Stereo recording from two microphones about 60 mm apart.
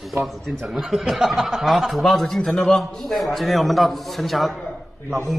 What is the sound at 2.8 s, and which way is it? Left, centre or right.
A man's voice, centre.